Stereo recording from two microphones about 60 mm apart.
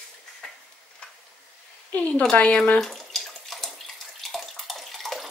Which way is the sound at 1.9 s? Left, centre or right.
Left.